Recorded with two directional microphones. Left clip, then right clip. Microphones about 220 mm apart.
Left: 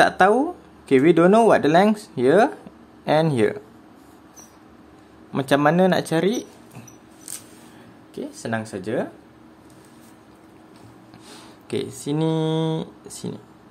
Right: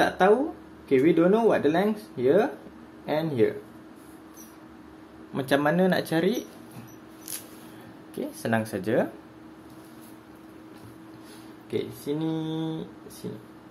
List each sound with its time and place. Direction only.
0.8 s speech: 35° left (ahead or behind)
5.3 s speech: 25° left (ahead or behind)
8.1 s speech: 10° left (ahead or behind)
11.7 s speech: 35° left (ahead or behind)